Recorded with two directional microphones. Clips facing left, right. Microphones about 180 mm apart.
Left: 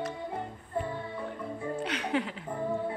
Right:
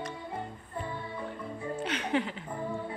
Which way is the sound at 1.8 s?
Centre (ahead or behind).